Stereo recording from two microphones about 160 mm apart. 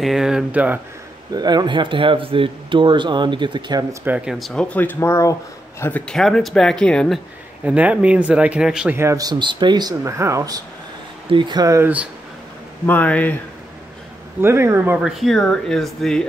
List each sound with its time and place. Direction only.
0.0 s speech: 5° right (ahead or behind)
1.3 s a man's voice: 25° right (ahead or behind)
4.0 s speech: 10° right (ahead or behind)
7.6 s speech: 10° right (ahead or behind)
8.9 s a man's voice: 20° right (ahead or behind)
12.8 s speech: 10° left (ahead or behind)
14.4 s speech: 15° right (ahead or behind); by 16.3 s centre (ahead or behind)